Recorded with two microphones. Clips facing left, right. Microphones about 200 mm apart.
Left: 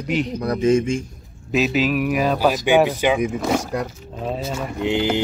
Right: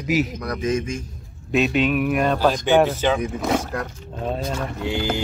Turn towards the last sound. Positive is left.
turn(degrees=20)  # may be behind; listen again after turning